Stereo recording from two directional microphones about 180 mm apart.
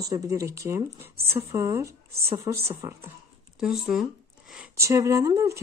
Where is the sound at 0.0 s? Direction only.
20° right (ahead or behind).